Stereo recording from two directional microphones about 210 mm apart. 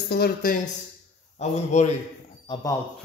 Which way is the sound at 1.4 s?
35° left (ahead or behind).